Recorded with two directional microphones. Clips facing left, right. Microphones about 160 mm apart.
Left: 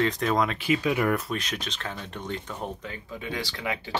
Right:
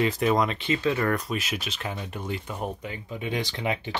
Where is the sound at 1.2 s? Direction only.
5° right (ahead or behind); by 3.8 s 20° right (ahead or behind).